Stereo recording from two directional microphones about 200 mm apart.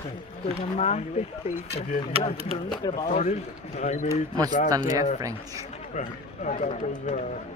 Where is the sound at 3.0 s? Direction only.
35° left (ahead or behind).